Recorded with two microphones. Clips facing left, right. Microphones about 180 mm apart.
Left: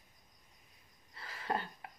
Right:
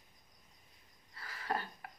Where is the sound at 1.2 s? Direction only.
20° left (ahead or behind).